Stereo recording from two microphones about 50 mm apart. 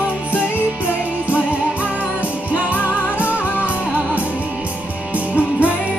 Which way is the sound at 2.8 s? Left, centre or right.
Left.